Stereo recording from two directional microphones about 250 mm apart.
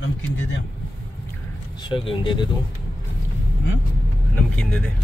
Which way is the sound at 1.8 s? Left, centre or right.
Left.